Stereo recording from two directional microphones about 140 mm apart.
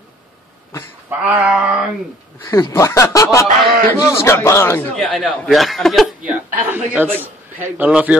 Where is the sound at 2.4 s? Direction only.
20° left (ahead or behind).